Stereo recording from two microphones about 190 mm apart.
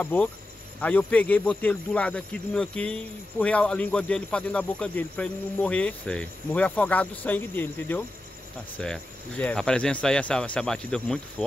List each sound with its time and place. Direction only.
0.0 s speech: 10° left (ahead or behind)